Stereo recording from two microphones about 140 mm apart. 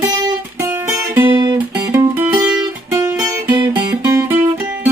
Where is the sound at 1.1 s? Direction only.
20° right (ahead or behind).